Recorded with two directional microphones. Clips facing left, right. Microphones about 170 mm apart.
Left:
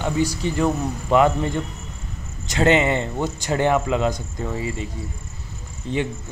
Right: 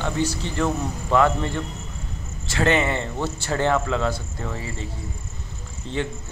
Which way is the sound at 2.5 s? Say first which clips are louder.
Left 3 dB; 20° left (ahead or behind).